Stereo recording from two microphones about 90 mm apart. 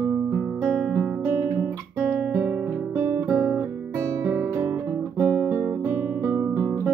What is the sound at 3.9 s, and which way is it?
Guitar, 30° right (ahead or behind).